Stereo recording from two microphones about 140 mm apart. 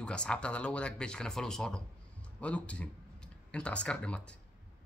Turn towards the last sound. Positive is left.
turn(degrees=10)  # may be behind; listen again after turning